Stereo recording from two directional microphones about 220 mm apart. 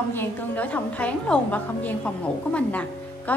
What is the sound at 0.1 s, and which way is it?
A woman's voice, 10° left (ahead or behind).